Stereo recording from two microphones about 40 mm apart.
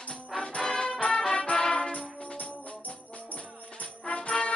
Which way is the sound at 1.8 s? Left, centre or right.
Left.